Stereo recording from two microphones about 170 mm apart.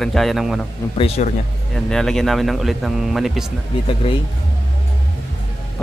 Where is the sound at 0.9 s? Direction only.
35° left (ahead or behind).